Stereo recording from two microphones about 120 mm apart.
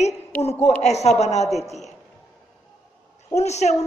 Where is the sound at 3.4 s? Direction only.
70° left (ahead or behind).